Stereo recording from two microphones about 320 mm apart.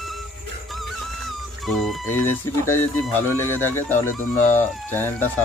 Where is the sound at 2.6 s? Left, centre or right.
Centre.